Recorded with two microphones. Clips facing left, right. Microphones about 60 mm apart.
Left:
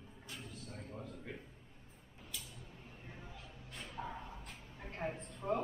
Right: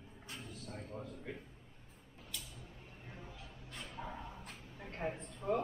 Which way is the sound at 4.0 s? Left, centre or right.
Centre.